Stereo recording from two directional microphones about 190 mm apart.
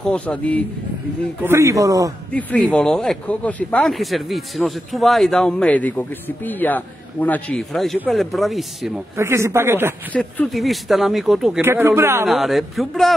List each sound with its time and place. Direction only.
0.0 s speech: 5° left (ahead or behind)
1.4 s speech: 15° right (ahead or behind)
2.3 s speech: 5° left (ahead or behind)
9.1 s speech: 15° right (ahead or behind)
10.1 s speech: 5° left (ahead or behind)
11.6 s speech: 10° right (ahead or behind)
12.3 s speech: centre (ahead or behind)